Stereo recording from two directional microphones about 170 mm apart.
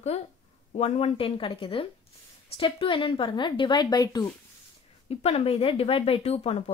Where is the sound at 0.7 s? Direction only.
40° left (ahead or behind); by 4.3 s 25° left (ahead or behind).